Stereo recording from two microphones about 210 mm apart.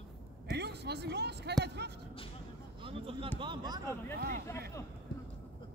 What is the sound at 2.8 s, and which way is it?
Speech, 25° right (ahead or behind).